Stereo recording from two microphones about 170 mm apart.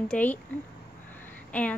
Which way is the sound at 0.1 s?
10° left (ahead or behind).